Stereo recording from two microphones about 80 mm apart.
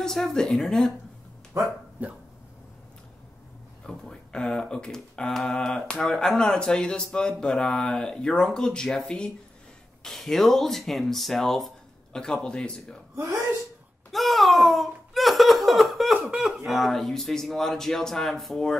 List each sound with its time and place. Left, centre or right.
0.0 s speech: centre
1.5 s speech: right
2.0 s speech: right
3.8 s speech: centre
13.1 s speech: right
14.1 s laughter: centre
16.3 s speech: centre